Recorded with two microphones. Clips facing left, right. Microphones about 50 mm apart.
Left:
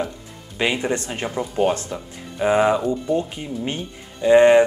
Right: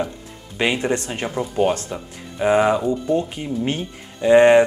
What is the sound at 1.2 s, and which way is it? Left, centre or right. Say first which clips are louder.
Speech: even; centre.